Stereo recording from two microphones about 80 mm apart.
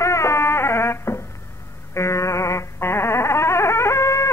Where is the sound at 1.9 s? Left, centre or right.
Left.